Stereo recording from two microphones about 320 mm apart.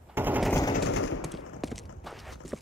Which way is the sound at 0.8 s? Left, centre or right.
Left.